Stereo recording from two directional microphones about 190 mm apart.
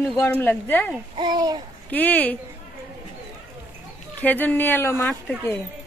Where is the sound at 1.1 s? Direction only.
25° right (ahead or behind).